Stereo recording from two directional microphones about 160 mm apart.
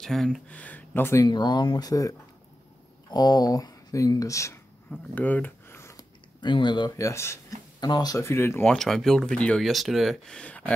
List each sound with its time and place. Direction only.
0.0 s speech: centre (ahead or behind); by 4.6 s 20° left (ahead or behind)
4.9 s a sound: 10° left (ahead or behind)
6.4 s speech: 30° left (ahead or behind); by 8.7 s 15° left (ahead or behind)
8.7 s speech: centre (ahead or behind)